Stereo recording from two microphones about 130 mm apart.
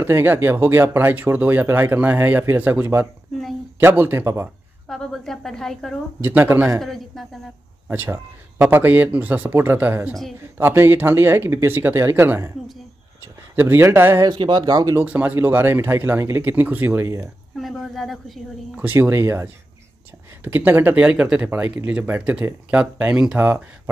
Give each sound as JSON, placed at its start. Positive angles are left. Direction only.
{"t": 0.0, "sound": "speech", "side_deg": -15}
{"t": 4.8, "sound": "speech", "side_deg": 5}
{"t": 6.2, "sound": "speech", "side_deg": -15}
{"t": 6.8, "sound": "speech", "side_deg": 0}
{"t": 7.9, "sound": "speech", "side_deg": -15}
{"t": 13.6, "sound": "speech", "side_deg": -15}
{"t": 14.2, "sound": "speech", "side_deg": -35}
{"t": 15.0, "sound": "speech", "side_deg": -10}
{"t": 17.6, "sound": "speech", "side_deg": 0}
{"t": 18.8, "sound": "speech", "side_deg": -15}